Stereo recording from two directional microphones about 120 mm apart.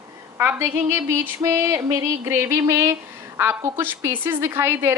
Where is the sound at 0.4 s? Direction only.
20° right (ahead or behind).